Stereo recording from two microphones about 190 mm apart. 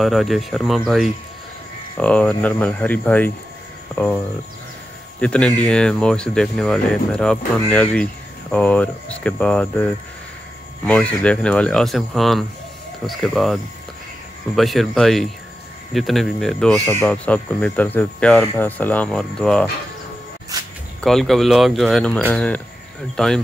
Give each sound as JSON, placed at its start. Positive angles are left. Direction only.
{"t": 0.0, "sound": "speech", "side_deg": 0}
{"t": 5.2, "sound": "speech", "side_deg": 5}
{"t": 20.5, "sound": "a sound", "side_deg": -20}
{"t": 21.0, "sound": "speech", "side_deg": 0}